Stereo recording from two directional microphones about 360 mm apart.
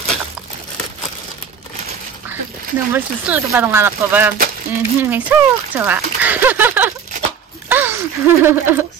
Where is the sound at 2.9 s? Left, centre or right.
Centre.